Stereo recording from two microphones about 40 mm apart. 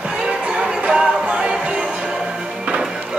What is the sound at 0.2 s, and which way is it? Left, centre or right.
Music, right.